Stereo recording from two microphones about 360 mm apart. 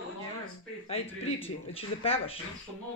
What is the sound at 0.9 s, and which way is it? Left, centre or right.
Speech, centre.